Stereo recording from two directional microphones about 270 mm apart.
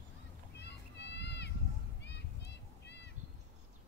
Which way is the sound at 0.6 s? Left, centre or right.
Left.